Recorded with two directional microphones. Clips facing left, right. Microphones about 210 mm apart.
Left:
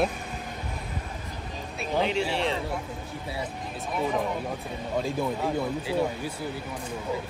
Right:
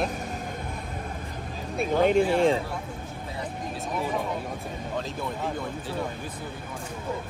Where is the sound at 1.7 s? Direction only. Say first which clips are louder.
Right 6 dB; 50° right (ahead or behind).